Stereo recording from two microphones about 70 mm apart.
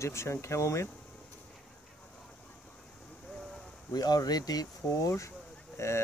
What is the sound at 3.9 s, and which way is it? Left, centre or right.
Speech, left.